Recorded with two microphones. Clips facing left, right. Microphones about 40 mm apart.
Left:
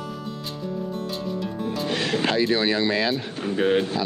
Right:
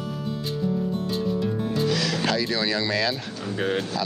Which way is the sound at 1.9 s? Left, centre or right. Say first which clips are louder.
Left 1 dB; left.